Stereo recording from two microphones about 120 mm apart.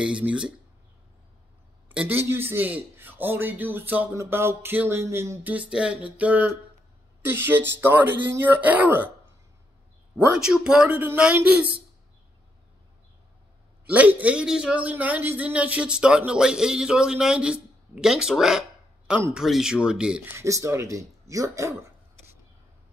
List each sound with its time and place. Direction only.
0.0 s a man's voice: 10° right (ahead or behind)
1.9 s a man's voice: 15° right (ahead or behind)
10.1 s a man's voice: 5° right (ahead or behind)
13.8 s a man's voice: 10° right (ahead or behind)
20.3 s speech: 25° right (ahead or behind)